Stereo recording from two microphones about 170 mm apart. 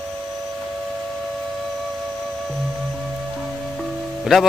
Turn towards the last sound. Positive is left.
turn(degrees=0)  # may be behind; listen again after turning